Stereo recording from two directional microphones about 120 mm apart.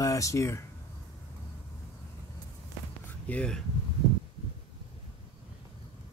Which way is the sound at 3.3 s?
5° left (ahead or behind).